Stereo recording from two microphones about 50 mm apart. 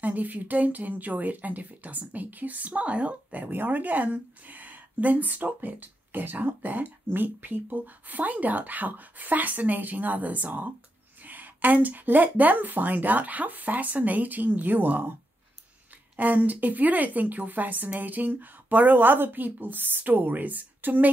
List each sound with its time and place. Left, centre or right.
0.0 s speech: right
16.2 s speech: right